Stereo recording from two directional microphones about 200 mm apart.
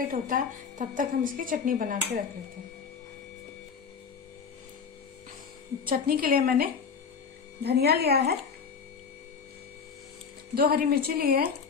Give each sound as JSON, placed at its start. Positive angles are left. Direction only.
{"t": 0.1, "sound": "speech", "side_deg": -40}
{"t": 5.9, "sound": "speech", "side_deg": -45}
{"t": 10.5, "sound": "speech", "side_deg": -50}